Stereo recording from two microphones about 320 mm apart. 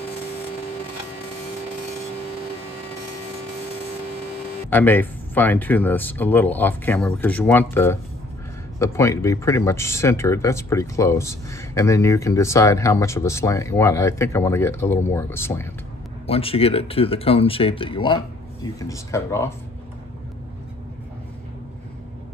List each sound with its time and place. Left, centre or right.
4.6 s speech: centre